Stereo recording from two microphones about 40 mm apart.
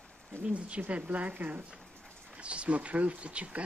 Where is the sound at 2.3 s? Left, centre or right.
Right.